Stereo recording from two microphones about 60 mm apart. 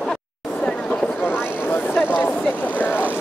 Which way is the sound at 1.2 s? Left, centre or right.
Left.